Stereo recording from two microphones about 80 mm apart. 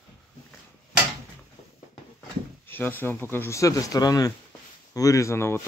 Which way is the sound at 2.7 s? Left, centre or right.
Left.